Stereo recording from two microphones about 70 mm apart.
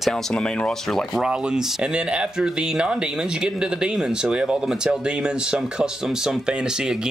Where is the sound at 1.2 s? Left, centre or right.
Centre.